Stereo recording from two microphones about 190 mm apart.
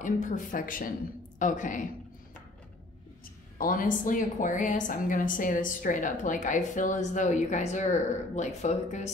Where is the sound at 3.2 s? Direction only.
50° left (ahead or behind).